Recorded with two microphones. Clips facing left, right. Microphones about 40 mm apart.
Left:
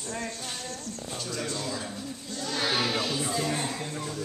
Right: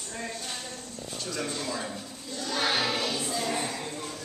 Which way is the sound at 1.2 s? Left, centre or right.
Centre.